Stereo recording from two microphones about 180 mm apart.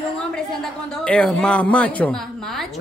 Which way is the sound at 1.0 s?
5° left (ahead or behind).